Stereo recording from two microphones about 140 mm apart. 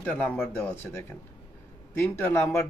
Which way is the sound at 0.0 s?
10° left (ahead or behind).